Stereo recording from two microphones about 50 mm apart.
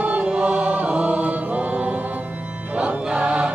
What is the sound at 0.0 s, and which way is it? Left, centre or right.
Choir, right.